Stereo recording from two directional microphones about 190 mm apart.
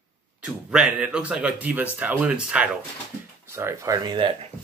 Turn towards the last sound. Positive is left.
turn(degrees=-25)  # may be behind; listen again after turning